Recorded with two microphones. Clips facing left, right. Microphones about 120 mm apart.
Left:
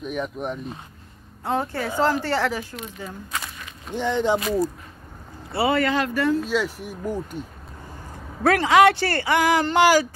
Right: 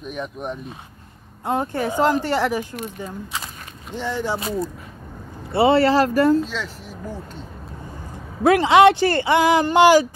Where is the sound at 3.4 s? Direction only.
40° right (ahead or behind).